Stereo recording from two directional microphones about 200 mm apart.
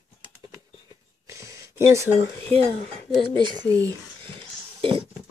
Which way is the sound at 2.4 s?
30° right (ahead or behind).